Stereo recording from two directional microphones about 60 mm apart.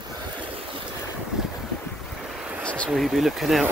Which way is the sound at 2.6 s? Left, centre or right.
Centre.